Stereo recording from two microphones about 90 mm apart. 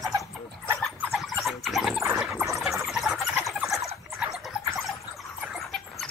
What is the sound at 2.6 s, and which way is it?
Chicken, centre (ahead or behind).